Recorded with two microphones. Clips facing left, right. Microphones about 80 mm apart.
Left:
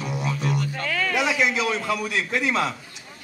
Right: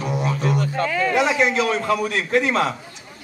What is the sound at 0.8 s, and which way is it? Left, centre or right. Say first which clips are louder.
Music: right 4 dB; centre.